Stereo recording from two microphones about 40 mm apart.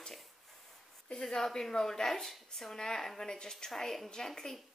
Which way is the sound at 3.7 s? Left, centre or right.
Centre.